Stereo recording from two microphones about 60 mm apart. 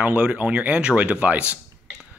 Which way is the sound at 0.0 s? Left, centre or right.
Right.